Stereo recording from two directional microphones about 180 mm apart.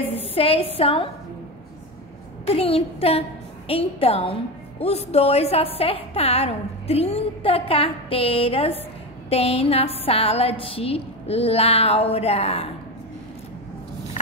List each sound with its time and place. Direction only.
0.0 s a woman's voice: 35° left (ahead or behind)
2.4 s a woman's voice: 35° left (ahead or behind)